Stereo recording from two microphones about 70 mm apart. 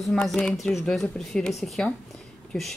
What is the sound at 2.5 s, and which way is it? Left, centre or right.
Speech, centre.